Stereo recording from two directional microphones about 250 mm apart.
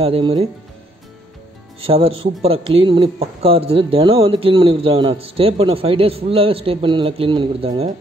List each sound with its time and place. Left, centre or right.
0.0 s speech: right
1.8 s speech: right